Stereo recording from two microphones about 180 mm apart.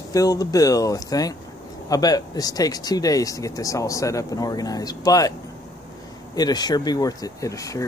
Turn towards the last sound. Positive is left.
turn(degrees=20)  # may be behind; listen again after turning